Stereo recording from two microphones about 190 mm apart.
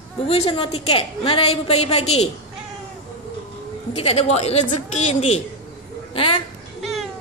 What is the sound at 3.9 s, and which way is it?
A woman's voice, 30° left (ahead or behind).